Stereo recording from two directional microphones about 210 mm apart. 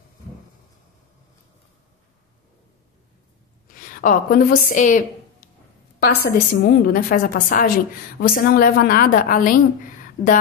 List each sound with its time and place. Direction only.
3.6 s a woman's voice: 40° left (ahead or behind)